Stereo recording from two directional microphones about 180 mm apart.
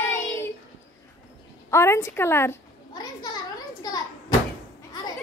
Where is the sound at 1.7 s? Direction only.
15° left (ahead or behind).